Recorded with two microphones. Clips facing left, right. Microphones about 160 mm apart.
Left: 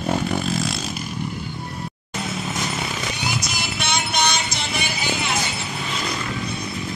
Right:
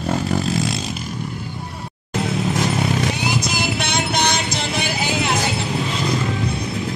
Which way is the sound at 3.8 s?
90° right.